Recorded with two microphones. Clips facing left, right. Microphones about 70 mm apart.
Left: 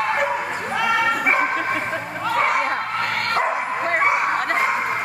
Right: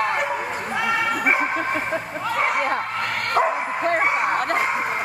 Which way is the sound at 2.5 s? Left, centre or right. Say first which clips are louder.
Left 1 dB; left.